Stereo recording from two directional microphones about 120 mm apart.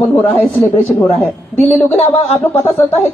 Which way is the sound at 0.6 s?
Centre (ahead or behind).